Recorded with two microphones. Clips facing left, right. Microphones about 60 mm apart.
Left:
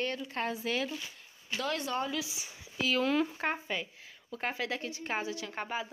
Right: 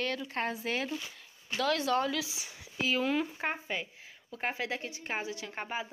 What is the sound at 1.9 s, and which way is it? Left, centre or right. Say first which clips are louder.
Speech: right 4 dB; right.